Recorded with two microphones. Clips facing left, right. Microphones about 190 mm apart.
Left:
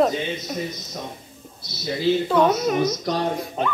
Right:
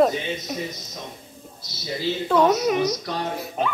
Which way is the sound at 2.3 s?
Centre (ahead or behind).